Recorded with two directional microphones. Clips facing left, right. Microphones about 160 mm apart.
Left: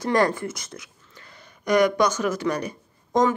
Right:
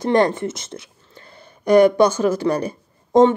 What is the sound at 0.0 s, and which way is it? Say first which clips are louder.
A woman's voice: right 4 dB; 25° right (ahead or behind).